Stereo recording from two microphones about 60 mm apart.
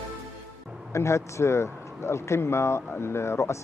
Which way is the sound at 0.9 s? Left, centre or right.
Left.